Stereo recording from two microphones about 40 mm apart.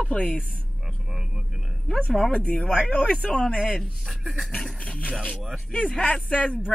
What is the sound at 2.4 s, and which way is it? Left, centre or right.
Speech, left.